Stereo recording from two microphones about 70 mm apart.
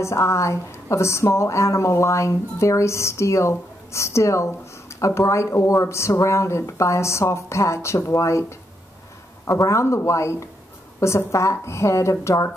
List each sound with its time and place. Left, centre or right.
0.0 s a woman's voice: left